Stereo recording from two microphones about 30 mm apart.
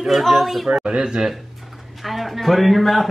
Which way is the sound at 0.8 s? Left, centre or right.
Right.